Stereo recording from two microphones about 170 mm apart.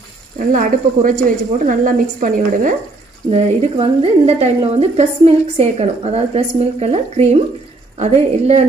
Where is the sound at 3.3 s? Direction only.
35° right (ahead or behind).